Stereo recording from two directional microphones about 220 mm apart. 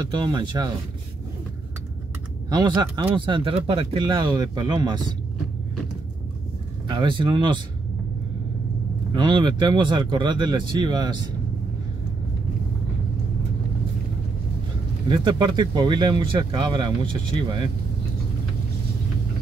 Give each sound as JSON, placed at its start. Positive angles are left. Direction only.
{"t": 0.1, "sound": "speech", "side_deg": -20}
{"t": 2.5, "sound": "speech", "side_deg": -20}
{"t": 6.9, "sound": "speech", "side_deg": -20}
{"t": 9.1, "sound": "speech", "side_deg": -20}
{"t": 15.0, "sound": "speech", "side_deg": -20}